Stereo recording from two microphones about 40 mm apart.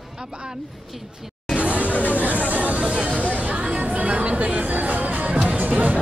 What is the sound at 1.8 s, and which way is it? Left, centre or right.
Chatter, left.